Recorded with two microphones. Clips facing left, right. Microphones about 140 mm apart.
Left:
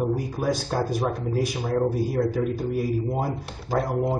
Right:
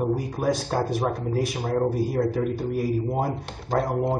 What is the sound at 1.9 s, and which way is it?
Speech, centre (ahead or behind).